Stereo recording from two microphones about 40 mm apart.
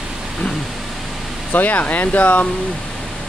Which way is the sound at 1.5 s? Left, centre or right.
Left.